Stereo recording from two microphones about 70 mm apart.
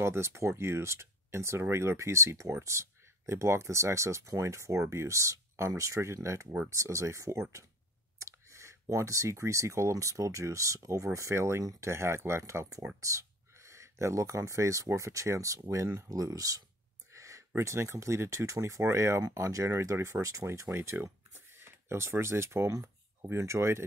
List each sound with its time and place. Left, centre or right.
0.0 s speech: right
17.1 s a sound: right
17.6 s speech: right